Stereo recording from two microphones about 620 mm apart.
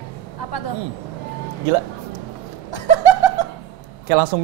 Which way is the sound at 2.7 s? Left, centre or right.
Left.